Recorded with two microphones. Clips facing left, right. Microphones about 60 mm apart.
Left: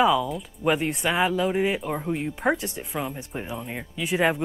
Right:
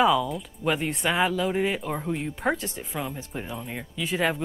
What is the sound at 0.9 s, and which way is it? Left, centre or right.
Speech, centre.